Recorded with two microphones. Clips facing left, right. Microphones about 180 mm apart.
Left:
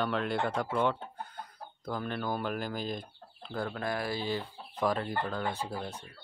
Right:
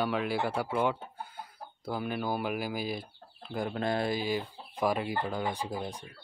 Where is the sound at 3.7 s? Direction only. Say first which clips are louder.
Right 5 dB; 25° right (ahead or behind).